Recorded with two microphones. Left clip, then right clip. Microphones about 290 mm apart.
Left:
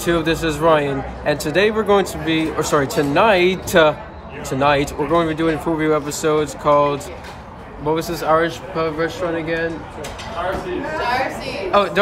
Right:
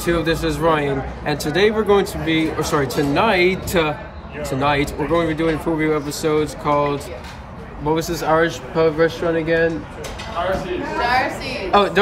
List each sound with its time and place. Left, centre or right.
0.0 s speech: centre
11.0 s a sound: right
11.7 s speech: centre